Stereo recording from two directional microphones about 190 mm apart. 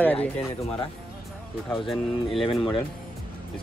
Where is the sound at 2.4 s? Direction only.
30° left (ahead or behind).